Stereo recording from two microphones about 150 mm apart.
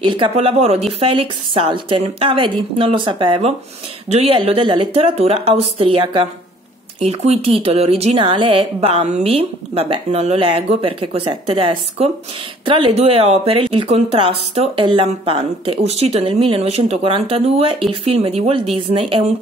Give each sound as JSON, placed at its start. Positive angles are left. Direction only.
{"t": 0.0, "sound": "speech", "side_deg": -40}